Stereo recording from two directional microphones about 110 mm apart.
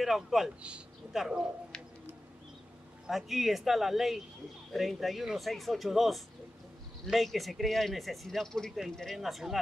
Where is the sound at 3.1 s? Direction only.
Centre (ahead or behind).